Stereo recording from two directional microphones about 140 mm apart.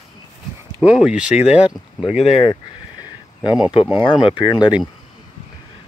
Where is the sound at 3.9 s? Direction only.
35° left (ahead or behind).